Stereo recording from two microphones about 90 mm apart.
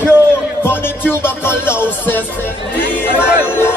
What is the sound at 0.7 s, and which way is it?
Music, 25° left (ahead or behind).